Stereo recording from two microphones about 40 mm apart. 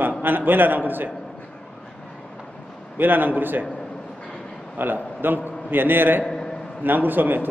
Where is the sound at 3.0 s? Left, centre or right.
Right.